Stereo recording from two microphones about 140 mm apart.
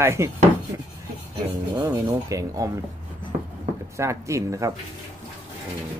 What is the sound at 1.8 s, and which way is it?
Speech, 25° right (ahead or behind).